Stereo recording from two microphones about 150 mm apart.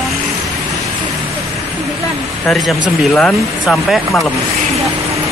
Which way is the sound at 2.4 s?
Centre (ahead or behind).